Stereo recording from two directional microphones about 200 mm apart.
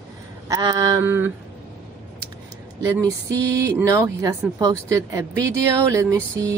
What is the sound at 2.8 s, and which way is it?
Speech, 15° right (ahead or behind).